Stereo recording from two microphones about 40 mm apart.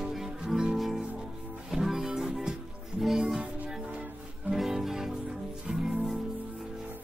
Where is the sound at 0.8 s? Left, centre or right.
Centre.